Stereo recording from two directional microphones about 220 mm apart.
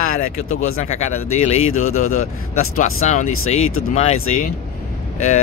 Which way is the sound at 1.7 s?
75° left (ahead or behind).